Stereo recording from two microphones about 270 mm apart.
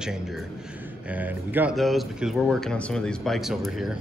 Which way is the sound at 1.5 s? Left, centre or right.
Centre.